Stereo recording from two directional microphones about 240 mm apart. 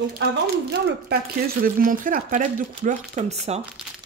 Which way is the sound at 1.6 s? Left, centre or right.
Right.